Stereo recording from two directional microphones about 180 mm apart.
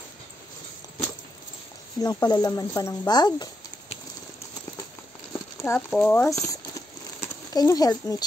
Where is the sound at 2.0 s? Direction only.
20° left (ahead or behind).